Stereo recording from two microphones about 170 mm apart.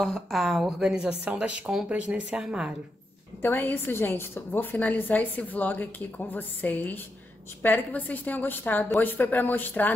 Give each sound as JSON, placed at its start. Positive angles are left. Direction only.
{"t": 0.0, "sound": "speech", "side_deg": 0}
{"t": 3.4, "sound": "a woman's voice", "side_deg": 10}